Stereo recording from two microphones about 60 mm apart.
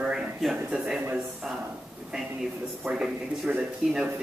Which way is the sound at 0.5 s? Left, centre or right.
Centre.